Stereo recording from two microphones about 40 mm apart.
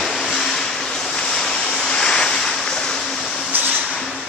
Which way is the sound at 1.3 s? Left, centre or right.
Centre.